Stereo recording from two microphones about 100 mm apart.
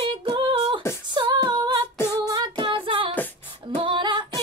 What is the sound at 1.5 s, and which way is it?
Singing, 45° right (ahead or behind).